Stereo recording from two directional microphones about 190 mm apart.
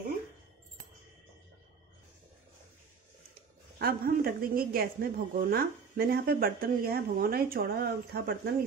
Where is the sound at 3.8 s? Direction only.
50° right (ahead or behind).